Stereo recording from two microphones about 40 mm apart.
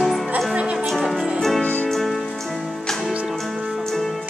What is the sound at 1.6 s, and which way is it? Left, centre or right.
Music, left.